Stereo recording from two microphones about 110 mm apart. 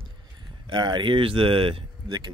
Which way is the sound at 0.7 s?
45° right (ahead or behind).